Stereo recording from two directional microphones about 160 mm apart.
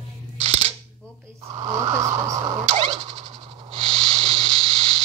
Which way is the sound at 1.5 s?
30° right (ahead or behind).